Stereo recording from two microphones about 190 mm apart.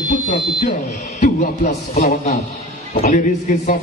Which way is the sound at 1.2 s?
45° left (ahead or behind).